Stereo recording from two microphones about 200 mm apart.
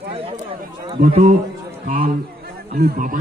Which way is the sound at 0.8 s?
35° right (ahead or behind).